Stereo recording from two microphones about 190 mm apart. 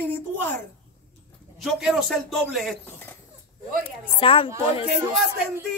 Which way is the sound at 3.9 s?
30° left (ahead or behind).